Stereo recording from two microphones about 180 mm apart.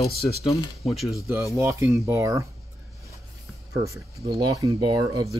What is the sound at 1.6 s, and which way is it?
Speech, 15° right (ahead or behind).